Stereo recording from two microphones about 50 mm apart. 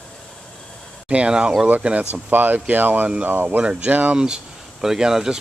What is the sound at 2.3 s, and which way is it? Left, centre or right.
Speech, right.